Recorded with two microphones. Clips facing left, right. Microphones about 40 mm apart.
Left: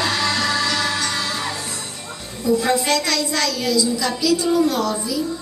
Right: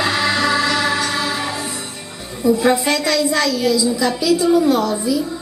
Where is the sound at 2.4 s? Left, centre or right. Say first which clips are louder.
Right 3 dB; centre.